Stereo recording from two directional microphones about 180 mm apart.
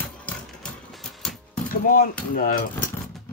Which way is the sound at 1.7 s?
50° left (ahead or behind).